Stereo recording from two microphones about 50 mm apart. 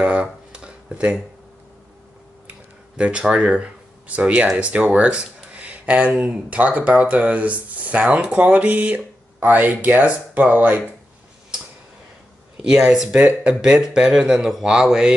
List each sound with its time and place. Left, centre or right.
0.0 s a sound: right
3.0 s speech: right
12.6 s speech: centre